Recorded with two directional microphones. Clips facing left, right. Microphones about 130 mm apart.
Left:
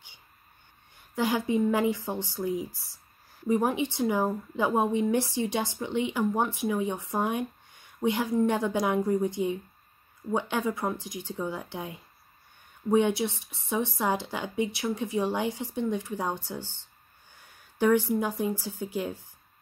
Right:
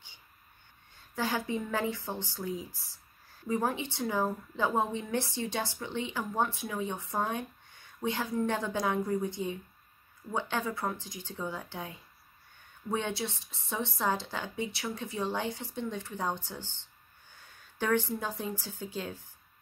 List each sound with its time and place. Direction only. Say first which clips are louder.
1.1 s speech: left 6 dB; 15° left (ahead or behind)
17.7 s speech: left 6 dB; 10° left (ahead or behind)